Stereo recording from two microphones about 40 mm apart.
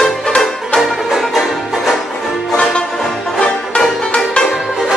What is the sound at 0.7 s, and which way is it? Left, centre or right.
Music, centre.